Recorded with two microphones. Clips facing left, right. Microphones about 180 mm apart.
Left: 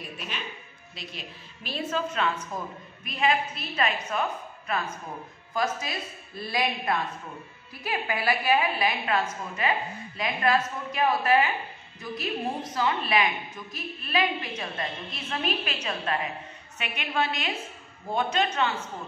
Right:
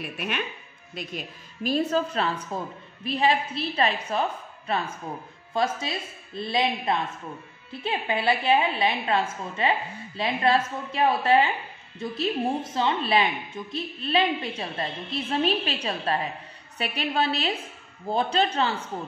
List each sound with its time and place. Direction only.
0.0 s speech: 60° right (ahead or behind)
0.9 s a woman's voice: 45° right (ahead or behind)